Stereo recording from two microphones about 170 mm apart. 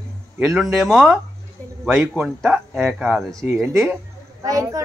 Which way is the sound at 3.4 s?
15° right (ahead or behind).